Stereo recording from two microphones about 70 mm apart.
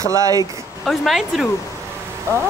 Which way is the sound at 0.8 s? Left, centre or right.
Centre.